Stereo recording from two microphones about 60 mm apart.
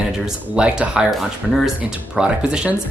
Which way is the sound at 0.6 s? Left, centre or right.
Centre.